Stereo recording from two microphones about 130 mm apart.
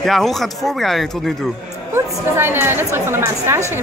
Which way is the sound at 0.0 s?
Centre (ahead or behind).